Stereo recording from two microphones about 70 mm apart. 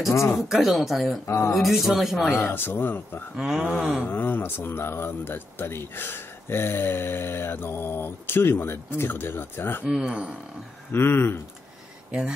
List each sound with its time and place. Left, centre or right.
0.4 s speech: centre
1.2 s speech: left
1.5 s speech: centre
2.3 s speech: left
3.3 s speech: centre
4.0 s speech: left
9.8 s speech: centre
10.9 s speech: left
12.1 s speech: centre